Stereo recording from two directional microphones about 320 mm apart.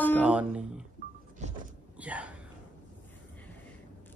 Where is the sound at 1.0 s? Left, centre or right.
Right.